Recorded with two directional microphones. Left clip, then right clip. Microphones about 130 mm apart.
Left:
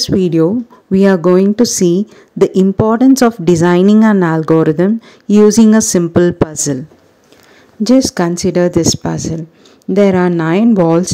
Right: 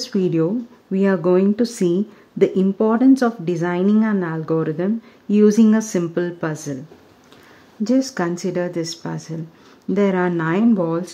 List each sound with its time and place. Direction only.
0.0 s speech: 35° left (ahead or behind)
2.9 s speech: 55° left (ahead or behind)
7.8 s speech: 40° left (ahead or behind); by 11.1 s 55° left (ahead or behind)